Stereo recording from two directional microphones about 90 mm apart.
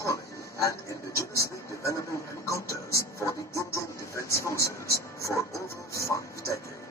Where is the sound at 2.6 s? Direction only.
35° left (ahead or behind).